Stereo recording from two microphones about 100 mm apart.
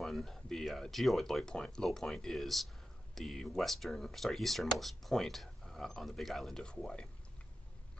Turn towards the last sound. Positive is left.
turn(degrees=5)  # may be behind; listen again after turning